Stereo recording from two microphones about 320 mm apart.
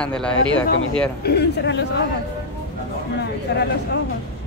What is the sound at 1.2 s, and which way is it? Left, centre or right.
Speech, left.